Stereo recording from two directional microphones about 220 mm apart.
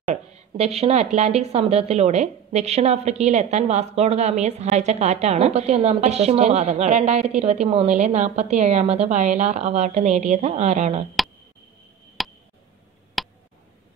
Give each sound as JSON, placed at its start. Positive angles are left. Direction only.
{"t": 0.1, "sound": "speech", "side_deg": -30}
{"t": 11.2, "sound": "a sound", "side_deg": 0}
{"t": 13.2, "sound": "tick", "side_deg": 0}